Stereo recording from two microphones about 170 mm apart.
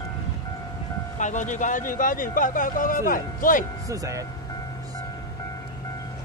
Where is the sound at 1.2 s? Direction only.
45° left (ahead or behind).